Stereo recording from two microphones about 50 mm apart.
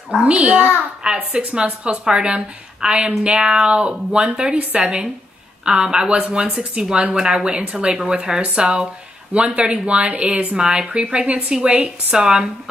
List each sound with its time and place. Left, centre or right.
0.2 s speech: right